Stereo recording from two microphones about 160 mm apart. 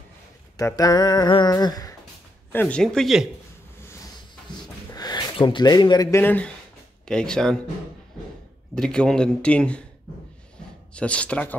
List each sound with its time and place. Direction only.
0.6 s speech: 20° left (ahead or behind)
2.5 s speech: 10° left (ahead or behind)
4.9 s speech: 25° left (ahead or behind)
6.2 s speech: 10° left (ahead or behind)
8.7 s speech: 5° left (ahead or behind)
11.0 s speech: 5° left (ahead or behind)